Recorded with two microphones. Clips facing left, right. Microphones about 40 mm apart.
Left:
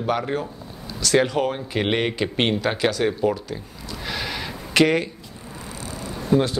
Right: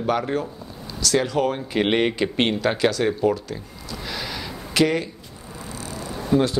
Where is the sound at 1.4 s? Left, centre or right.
Centre.